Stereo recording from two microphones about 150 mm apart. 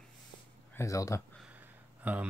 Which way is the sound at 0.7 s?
20° left (ahead or behind).